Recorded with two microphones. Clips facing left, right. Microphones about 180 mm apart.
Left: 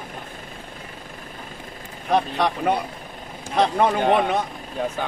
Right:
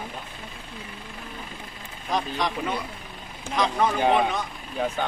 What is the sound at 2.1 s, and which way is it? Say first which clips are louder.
Speech: left 6 dB; 60° left (ahead or behind).